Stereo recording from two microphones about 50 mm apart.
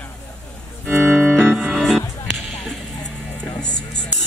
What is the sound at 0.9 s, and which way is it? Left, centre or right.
Music, right.